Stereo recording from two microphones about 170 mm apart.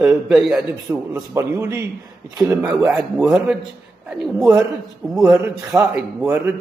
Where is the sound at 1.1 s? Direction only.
15° right (ahead or behind); by 4.3 s centre (ahead or behind).